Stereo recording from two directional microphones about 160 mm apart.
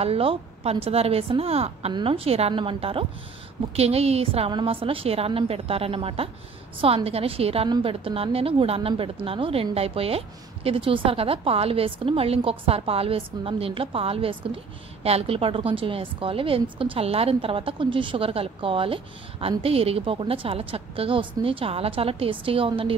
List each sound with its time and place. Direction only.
0.0 s a woman's voice: 35° right (ahead or behind)